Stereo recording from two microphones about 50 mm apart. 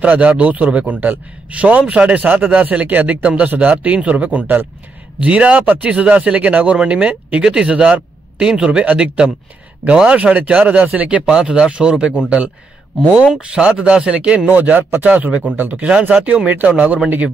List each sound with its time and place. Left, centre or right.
0.0 s a man's voice: right
7.4 s a man's voice: centre
13.4 s a man's voice: right
14.5 s a man's voice: right